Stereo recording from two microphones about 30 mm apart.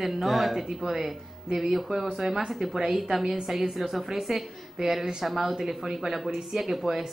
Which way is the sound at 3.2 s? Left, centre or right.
Centre.